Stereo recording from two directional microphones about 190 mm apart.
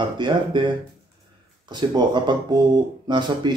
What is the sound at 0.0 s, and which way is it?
Speech, 25° right (ahead or behind).